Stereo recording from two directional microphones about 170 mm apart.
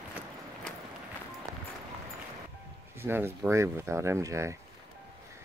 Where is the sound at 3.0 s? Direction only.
15° right (ahead or behind).